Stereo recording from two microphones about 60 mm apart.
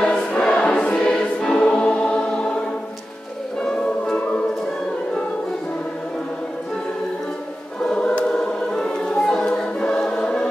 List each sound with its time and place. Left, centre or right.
0.0 s choir: centre
3.6 s music: centre
8.4 s choir: centre